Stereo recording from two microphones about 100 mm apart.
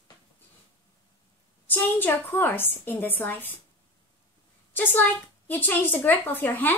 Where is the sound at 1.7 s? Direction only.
20° left (ahead or behind).